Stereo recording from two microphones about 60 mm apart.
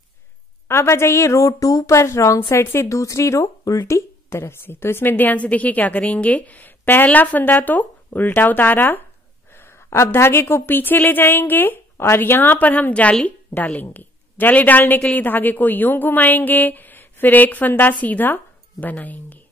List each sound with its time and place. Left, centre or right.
0.7 s a woman's voice: left
15.2 s a woman's voice: left